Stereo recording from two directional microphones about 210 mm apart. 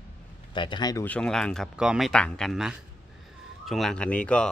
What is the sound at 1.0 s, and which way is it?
Speech, 5° left (ahead or behind).